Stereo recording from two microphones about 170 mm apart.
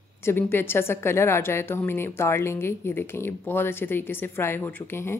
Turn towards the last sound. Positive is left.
turn(degrees=15)  # may be behind; listen again after turning